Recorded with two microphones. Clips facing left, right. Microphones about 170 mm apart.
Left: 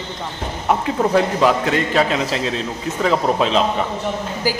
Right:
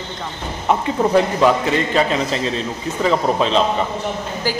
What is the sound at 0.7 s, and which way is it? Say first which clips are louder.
A man's voice: right 1 dB; centre (ahead or behind).